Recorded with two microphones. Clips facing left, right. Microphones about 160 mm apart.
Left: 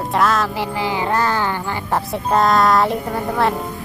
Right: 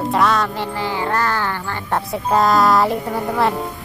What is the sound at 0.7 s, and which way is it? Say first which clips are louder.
Speech: left 2 dB; 15° left (ahead or behind).